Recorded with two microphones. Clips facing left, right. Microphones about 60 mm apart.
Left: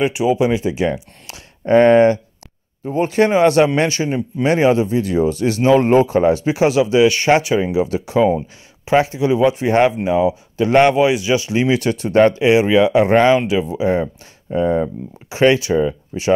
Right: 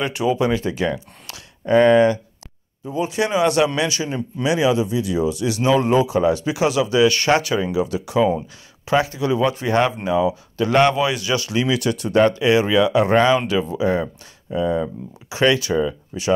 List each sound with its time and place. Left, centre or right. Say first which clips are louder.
0.0 s speech: left 4 dB; centre
1.7 s a man's voice: left 3 dB; left